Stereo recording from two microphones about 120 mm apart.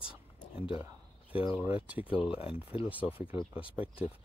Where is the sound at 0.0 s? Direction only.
45° left (ahead or behind).